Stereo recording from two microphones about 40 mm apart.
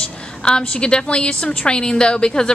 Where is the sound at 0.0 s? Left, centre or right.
Left.